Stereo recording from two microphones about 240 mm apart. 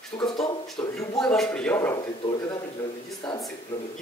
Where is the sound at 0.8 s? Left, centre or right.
Centre.